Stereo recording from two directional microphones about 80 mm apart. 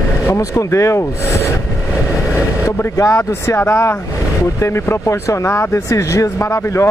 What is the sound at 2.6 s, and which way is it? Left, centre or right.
Speech, left.